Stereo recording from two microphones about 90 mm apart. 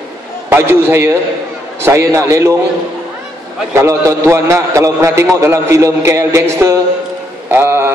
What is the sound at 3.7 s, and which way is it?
A man's voice, 30° right (ahead or behind).